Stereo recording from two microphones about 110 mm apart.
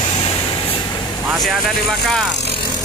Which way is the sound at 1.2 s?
Centre (ahead or behind).